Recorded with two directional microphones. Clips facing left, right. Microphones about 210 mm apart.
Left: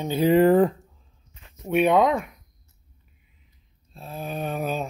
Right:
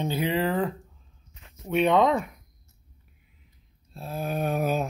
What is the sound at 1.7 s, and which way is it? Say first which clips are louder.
Speech: left 2 dB; 10° left (ahead or behind).